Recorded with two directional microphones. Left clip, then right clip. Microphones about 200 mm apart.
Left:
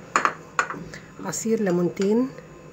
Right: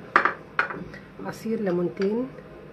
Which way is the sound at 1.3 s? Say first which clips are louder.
Left 4 dB; 20° left (ahead or behind).